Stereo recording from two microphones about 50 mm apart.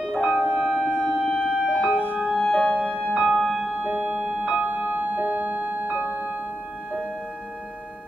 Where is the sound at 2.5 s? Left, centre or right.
Centre.